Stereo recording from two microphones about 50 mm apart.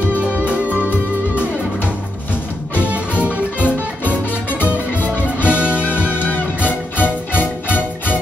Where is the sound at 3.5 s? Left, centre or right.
Left.